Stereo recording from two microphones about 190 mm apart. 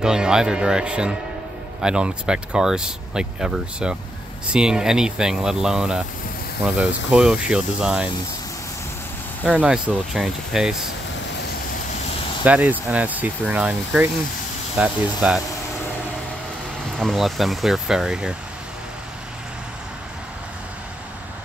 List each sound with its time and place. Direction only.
0.0 s speech: 5° right (ahead or behind)
9.4 s speech: 5° right (ahead or behind)
12.4 s speech: 5° right (ahead or behind)
17.0 s speech: centre (ahead or behind)